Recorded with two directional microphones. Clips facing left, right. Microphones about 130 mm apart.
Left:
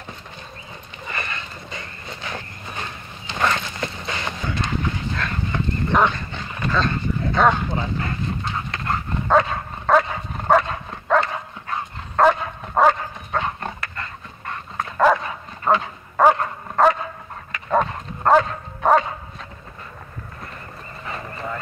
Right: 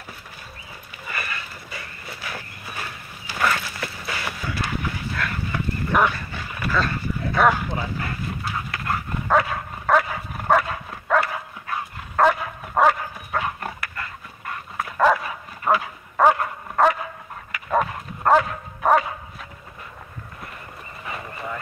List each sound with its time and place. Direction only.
1.0 s horse: 25° left (ahead or behind)
17.6 s dog: 30° left (ahead or behind)